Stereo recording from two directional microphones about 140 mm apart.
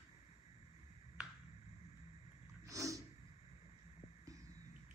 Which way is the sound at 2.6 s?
25° right (ahead or behind).